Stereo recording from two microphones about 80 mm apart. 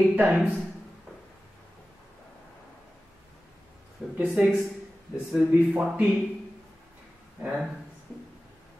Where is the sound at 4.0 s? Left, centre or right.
Centre.